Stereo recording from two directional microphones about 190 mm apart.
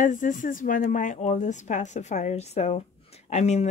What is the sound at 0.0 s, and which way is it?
Speech, 45° left (ahead or behind).